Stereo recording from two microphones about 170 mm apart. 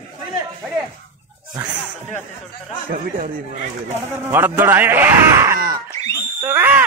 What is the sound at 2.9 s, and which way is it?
Speech, 50° right (ahead or behind).